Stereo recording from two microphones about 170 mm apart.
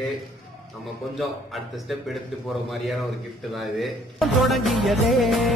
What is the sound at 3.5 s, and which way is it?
Music, centre (ahead or behind).